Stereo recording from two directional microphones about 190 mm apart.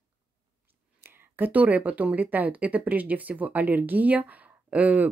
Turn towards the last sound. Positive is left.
turn(degrees=-10)  # may be behind; listen again after turning